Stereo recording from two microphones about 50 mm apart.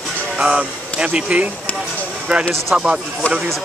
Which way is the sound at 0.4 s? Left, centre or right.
Right.